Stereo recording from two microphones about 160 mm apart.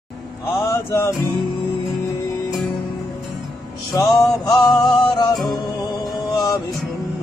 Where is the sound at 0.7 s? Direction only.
20° left (ahead or behind).